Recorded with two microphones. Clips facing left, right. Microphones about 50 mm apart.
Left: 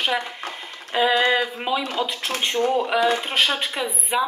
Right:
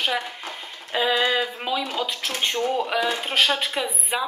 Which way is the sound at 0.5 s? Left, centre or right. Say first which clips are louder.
Left 2 dB; centre.